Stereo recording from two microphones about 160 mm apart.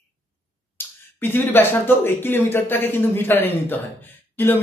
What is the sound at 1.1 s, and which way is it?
A man's voice, 15° left (ahead or behind).